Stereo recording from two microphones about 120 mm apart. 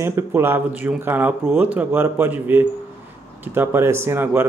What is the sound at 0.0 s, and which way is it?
Speech, 20° right (ahead or behind).